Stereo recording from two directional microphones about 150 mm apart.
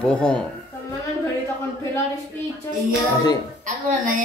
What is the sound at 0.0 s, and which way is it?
Speech, 5° left (ahead or behind).